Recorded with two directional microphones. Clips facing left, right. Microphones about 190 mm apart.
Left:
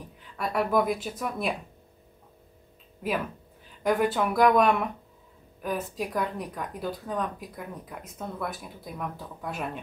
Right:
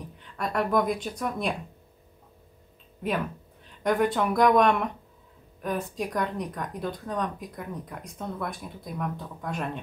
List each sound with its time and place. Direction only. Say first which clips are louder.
0.2 s speech: even; 5° left (ahead or behind)
3.6 s speech: even; centre (ahead or behind)